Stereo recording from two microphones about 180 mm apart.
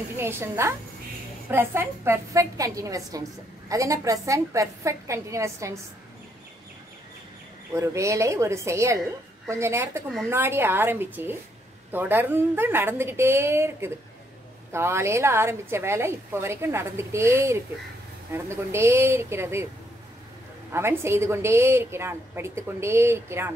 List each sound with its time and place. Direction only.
0.1 s a woman's voice: 15° right (ahead or behind)
7.7 s a woman's voice: 15° right (ahead or behind)
20.7 s a woman's voice: 15° right (ahead or behind)